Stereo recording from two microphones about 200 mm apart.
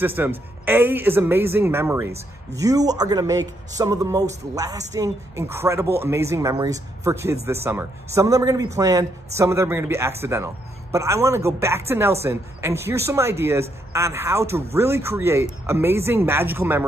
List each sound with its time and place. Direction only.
0.0 s a man's voice: 10° right (ahead or behind)